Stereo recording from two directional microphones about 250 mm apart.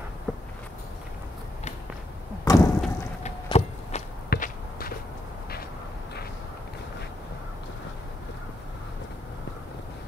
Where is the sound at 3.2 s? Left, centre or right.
Left.